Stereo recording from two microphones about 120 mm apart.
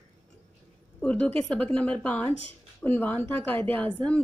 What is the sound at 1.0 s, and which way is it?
A woman's voice, 10° left (ahead or behind).